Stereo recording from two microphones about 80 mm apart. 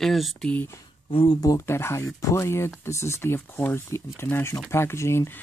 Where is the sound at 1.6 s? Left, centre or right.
Left.